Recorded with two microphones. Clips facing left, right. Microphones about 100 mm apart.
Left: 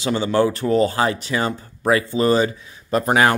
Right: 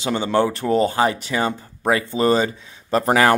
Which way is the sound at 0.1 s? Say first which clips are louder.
Left 1 dB; 25° right (ahead or behind).